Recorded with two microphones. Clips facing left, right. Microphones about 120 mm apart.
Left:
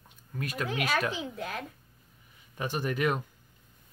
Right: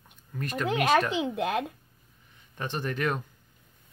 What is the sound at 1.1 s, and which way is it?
Speech, 75° right (ahead or behind).